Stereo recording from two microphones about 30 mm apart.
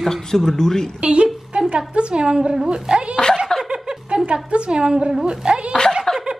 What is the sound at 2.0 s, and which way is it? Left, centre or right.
A woman's voice, right.